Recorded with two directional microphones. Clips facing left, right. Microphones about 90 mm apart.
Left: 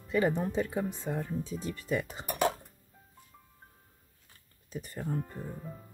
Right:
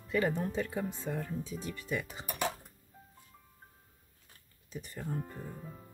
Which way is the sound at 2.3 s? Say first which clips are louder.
Left 6 dB; 50° left (ahead or behind).